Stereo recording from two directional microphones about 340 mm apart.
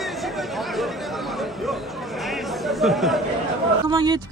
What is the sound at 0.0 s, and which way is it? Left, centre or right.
Chatter, centre.